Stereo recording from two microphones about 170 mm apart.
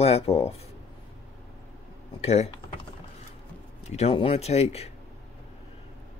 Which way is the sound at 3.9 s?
35° left (ahead or behind).